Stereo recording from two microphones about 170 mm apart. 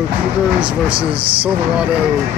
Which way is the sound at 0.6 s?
30° right (ahead or behind).